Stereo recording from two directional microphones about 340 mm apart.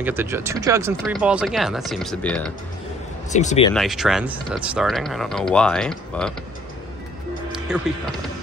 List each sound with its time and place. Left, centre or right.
0.0 s speech: centre
3.3 s speech: left
3.7 s speech: centre
7.5 s speech: centre